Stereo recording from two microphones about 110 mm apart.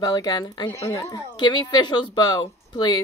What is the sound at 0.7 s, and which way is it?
Speech, 25° left (ahead or behind).